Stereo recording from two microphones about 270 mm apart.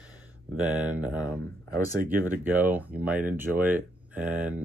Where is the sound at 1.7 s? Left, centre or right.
Right.